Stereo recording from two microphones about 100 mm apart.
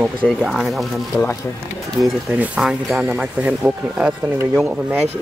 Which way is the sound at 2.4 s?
10° right (ahead or behind).